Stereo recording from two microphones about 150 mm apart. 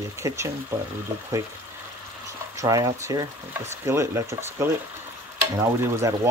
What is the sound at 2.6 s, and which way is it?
Speech, 25° right (ahead or behind).